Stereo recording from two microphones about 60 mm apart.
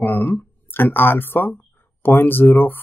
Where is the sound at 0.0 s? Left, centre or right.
Left.